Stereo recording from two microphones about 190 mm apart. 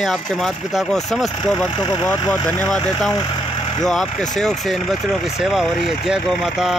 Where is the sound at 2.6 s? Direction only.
5° left (ahead or behind).